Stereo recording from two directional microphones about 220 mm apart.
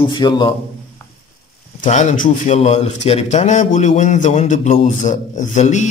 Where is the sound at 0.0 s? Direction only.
20° left (ahead or behind).